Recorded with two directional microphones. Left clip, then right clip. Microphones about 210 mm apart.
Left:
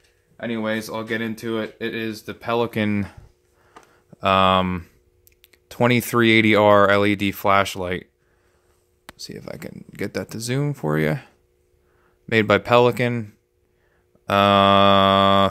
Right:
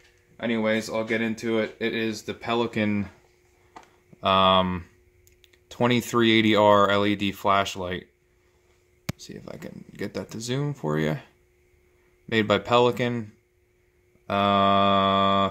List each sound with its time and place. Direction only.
0.4 s speech: 35° left (ahead or behind)
4.2 s speech: 40° left (ahead or behind)
9.2 s speech: 40° left (ahead or behind)
14.2 s cattle: 50° left (ahead or behind)